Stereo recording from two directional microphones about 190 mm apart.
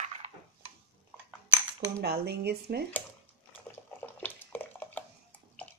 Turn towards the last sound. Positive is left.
turn(degrees=10)  # may be behind; listen again after turning